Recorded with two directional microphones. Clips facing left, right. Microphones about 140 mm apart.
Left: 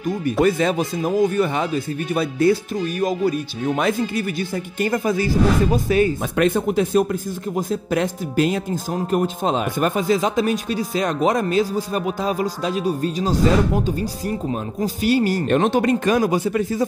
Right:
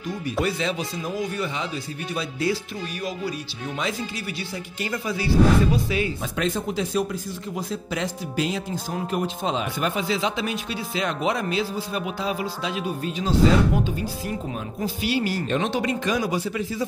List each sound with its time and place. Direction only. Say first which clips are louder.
0.4 s speech: left 7 dB; 50° left (ahead or behind)
14.8 s speech: left 6 dB; 45° left (ahead or behind)